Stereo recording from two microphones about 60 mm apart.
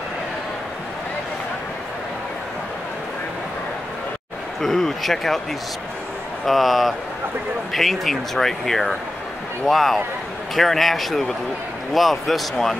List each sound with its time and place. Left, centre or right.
4.6 s speech: centre
6.4 s speech: centre